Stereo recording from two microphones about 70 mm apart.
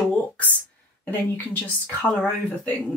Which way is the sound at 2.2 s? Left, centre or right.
Centre.